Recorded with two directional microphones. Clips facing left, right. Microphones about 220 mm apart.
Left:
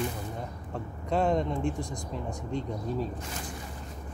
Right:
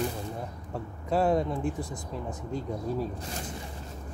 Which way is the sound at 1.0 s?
5° right (ahead or behind).